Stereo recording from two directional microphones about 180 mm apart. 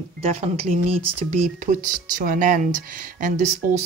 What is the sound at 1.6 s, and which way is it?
Speech, 45° right (ahead or behind).